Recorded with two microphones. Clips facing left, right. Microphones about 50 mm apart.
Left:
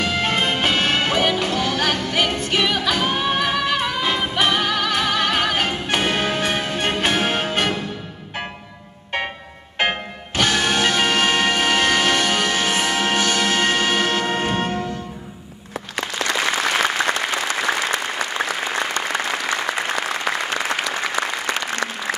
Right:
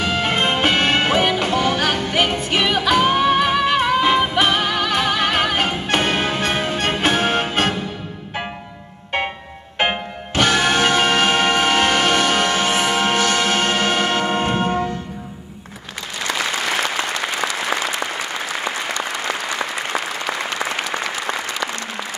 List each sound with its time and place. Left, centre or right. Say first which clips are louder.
0.0 s music: right 1 dB; centre
9.8 s music: right 1 dB; centre
12.0 s a sound: right 2 dB; centre
12.5 s music: right 2 dB; centre